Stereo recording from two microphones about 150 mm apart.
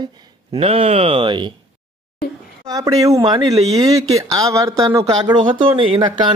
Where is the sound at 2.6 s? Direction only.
25° right (ahead or behind).